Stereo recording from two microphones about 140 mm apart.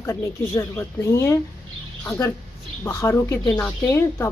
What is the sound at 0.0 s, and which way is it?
A woman's voice, 20° left (ahead or behind).